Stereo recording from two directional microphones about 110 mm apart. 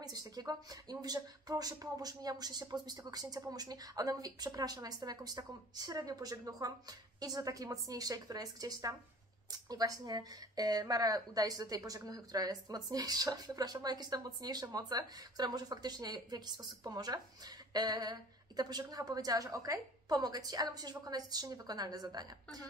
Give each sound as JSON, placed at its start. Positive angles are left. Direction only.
{"t": 0.0, "sound": "speech", "side_deg": -35}